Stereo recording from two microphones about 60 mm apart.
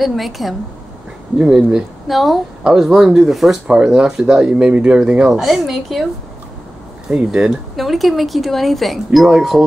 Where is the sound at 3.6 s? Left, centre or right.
Centre.